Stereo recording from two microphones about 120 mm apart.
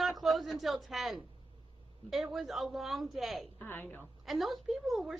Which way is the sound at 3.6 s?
15° left (ahead or behind).